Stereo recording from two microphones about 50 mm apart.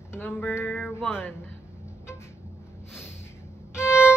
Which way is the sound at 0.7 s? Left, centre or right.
Centre.